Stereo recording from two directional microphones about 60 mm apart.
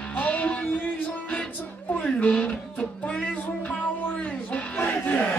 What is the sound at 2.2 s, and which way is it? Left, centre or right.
Music, left.